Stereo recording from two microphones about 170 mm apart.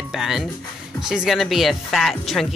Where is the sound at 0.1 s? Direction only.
Centre (ahead or behind).